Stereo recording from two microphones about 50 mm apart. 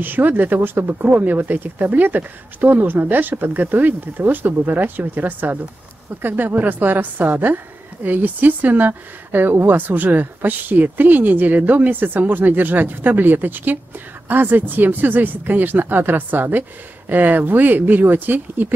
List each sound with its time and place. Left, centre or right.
0.0 s a woman's voice: right